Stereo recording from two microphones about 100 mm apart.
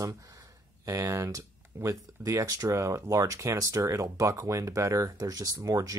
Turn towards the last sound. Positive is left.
turn(degrees=-35)  # may be behind; listen again after turning